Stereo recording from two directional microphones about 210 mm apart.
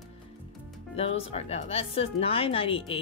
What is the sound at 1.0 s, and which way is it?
Speech, 30° left (ahead or behind).